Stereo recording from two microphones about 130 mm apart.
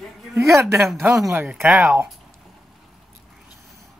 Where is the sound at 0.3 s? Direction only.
20° right (ahead or behind).